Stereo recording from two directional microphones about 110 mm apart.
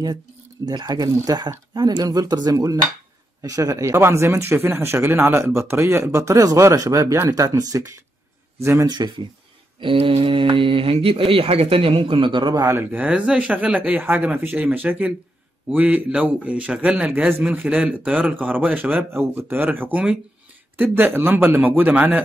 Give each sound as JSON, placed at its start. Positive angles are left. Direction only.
{"t": 0.7, "sound": "speech", "side_deg": -40}
{"t": 9.8, "sound": "speech", "side_deg": -50}
{"t": 12.6, "sound": "a man's voice", "side_deg": -20}